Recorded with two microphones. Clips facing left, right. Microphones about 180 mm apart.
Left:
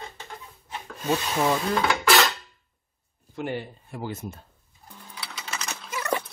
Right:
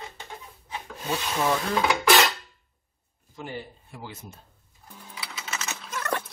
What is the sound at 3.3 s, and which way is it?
Speech, 65° left (ahead or behind).